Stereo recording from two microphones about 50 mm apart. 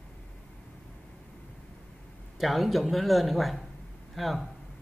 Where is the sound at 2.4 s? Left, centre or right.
Centre.